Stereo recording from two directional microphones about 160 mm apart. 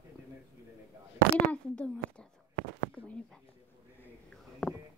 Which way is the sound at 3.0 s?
35° left (ahead or behind).